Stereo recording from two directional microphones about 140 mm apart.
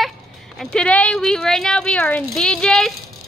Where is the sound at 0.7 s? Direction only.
10° left (ahead or behind).